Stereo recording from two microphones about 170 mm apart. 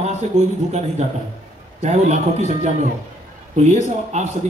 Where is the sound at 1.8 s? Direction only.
40° right (ahead or behind).